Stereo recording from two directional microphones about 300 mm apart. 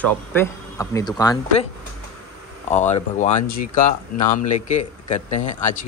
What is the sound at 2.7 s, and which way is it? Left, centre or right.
Speech, left.